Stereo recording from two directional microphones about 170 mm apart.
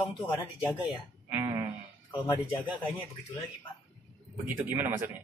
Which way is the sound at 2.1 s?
20° left (ahead or behind).